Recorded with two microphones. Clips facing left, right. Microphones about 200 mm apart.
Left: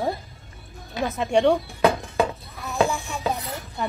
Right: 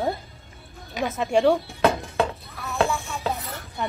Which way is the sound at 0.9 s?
15° right (ahead or behind).